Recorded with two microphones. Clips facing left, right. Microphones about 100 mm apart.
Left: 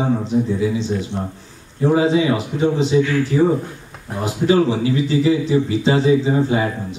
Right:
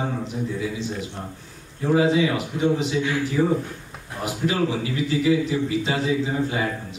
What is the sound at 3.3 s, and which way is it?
Speech, 15° left (ahead or behind).